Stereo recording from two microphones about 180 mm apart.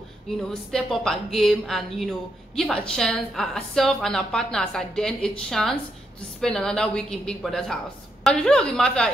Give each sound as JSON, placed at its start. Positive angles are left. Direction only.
{"t": 0.5, "sound": "speech", "side_deg": 0}